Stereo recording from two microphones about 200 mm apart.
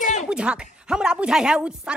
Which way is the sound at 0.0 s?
40° left (ahead or behind).